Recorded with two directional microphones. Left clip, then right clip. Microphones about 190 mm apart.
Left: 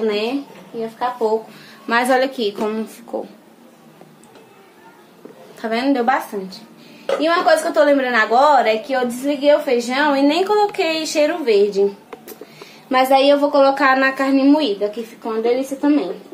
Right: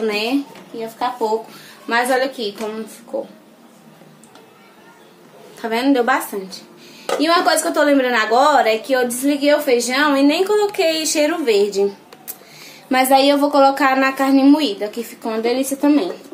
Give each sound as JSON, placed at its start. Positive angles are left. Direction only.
{"t": 0.0, "sound": "a woman's voice", "side_deg": 0}
{"t": 1.9, "sound": "a woman's voice", "side_deg": 35}
{"t": 5.6, "sound": "a woman's voice", "side_deg": 5}
{"t": 7.2, "sound": "a woman's voice", "side_deg": -10}
{"t": 12.9, "sound": "a woman's voice", "side_deg": -10}
{"t": 15.4, "sound": "speech", "side_deg": -15}